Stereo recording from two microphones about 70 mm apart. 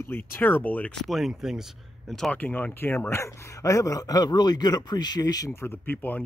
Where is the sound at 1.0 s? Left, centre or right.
Centre.